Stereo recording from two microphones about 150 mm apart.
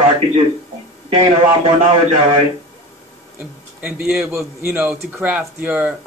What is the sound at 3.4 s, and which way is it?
A man's voice, 10° right (ahead or behind).